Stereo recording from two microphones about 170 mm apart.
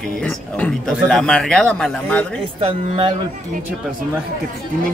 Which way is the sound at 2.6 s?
35° right (ahead or behind).